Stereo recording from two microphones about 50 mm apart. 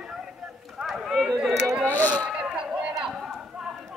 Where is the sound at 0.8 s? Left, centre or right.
Centre.